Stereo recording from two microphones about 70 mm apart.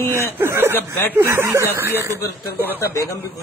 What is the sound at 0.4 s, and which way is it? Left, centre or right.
Speech, right.